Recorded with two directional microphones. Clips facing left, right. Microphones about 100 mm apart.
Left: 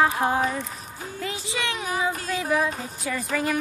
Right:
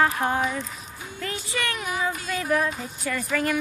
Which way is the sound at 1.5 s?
20° left (ahead or behind).